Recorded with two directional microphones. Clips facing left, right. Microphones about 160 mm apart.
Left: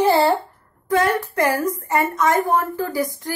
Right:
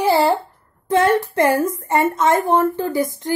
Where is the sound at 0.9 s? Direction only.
25° right (ahead or behind).